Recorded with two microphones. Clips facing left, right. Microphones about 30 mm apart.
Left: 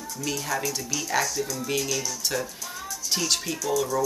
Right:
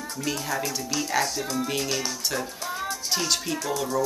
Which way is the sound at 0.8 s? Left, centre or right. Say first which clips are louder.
Right 2 dB; right.